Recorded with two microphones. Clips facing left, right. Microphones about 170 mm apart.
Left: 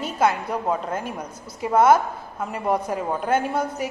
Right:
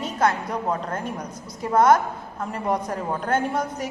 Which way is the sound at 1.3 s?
25° left (ahead or behind).